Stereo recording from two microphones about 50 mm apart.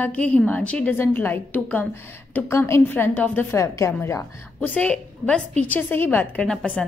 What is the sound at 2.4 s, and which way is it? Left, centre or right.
Speech, left.